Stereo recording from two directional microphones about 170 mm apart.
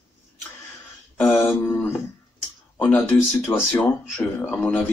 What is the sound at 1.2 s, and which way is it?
Speech, 15° left (ahead or behind).